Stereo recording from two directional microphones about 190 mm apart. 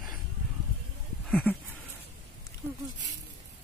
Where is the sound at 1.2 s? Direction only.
5° left (ahead or behind).